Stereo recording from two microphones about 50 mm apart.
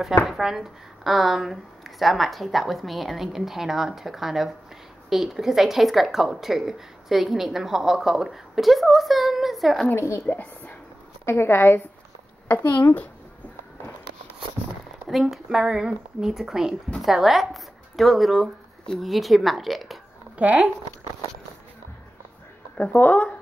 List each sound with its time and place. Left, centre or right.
0.3 s a woman's voice: centre
9.9 s a woman's voice: left
10.2 s a sound: left
11.2 s a woman's voice: left
15.0 s speech: centre
20.3 s speech: right
22.8 s speech: left